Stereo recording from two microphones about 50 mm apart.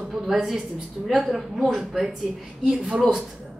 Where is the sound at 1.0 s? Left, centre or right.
Centre.